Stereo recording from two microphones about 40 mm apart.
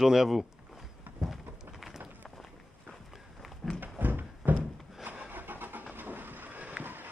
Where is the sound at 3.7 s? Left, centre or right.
Right.